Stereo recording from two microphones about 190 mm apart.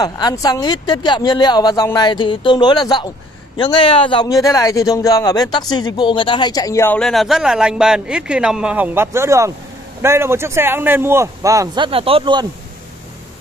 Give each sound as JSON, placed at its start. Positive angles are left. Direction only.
{"t": 0.0, "sound": "a man's voice", "side_deg": 20}